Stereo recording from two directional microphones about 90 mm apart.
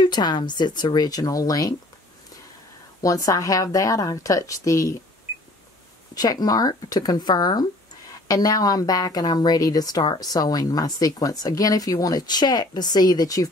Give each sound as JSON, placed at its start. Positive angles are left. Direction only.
{"t": 0.0, "sound": "a woman's voice", "side_deg": 50}
{"t": 3.0, "sound": "a woman's voice", "side_deg": 40}
{"t": 6.1, "sound": "a woman's voice", "side_deg": 45}